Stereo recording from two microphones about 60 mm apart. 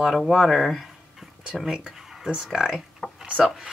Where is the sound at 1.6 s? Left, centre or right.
Centre.